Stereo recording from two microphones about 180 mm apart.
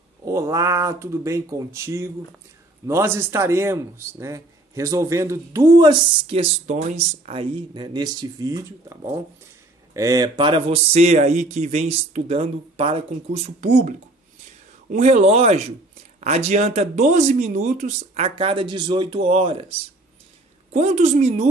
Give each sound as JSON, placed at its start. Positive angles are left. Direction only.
{"t": 0.2, "sound": "a man's voice", "side_deg": -15}
{"t": 20.7, "sound": "speech", "side_deg": -35}